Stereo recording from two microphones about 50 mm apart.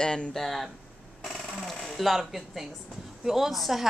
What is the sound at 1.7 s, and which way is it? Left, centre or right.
A woman's voice, centre.